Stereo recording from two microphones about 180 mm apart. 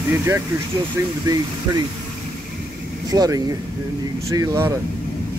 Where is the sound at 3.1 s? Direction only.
20° right (ahead or behind).